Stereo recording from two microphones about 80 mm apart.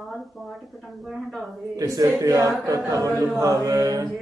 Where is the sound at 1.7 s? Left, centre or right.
Right.